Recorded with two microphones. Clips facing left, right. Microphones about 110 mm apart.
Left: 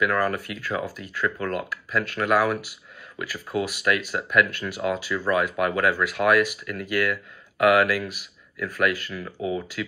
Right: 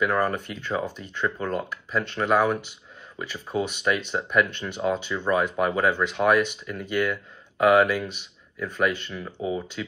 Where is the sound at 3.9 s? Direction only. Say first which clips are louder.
Left 1 dB; 20° right (ahead or behind).